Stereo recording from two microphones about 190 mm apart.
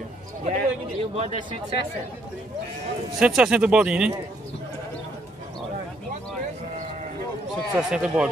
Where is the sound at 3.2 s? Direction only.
5° right (ahead or behind).